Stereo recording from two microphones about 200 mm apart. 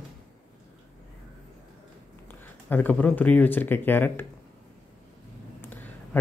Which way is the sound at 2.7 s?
10° left (ahead or behind).